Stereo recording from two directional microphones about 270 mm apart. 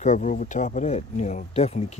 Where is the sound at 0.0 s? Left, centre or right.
Left.